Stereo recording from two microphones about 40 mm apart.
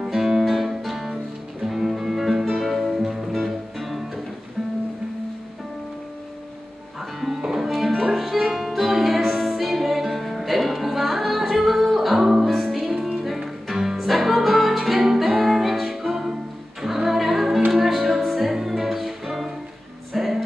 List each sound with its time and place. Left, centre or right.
0.0 s music: centre
7.0 s music: centre